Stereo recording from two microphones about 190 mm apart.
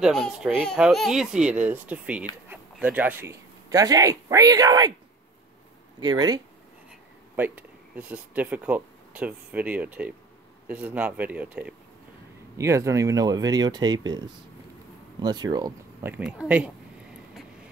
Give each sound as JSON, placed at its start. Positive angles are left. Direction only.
{"t": 0.0, "sound": "speech", "side_deg": 0}
{"t": 5.9, "sound": "speech", "side_deg": -20}
{"t": 7.3, "sound": "speech", "side_deg": -10}